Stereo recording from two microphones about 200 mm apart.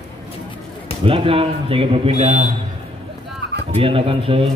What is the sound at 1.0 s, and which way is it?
Speech, 25° right (ahead or behind).